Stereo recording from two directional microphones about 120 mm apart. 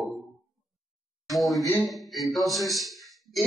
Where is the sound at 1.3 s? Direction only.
Centre (ahead or behind).